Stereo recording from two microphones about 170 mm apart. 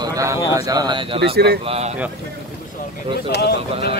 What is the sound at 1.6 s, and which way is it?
Speech, 35° right (ahead or behind).